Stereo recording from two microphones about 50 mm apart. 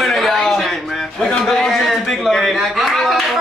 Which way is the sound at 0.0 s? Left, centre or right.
Centre.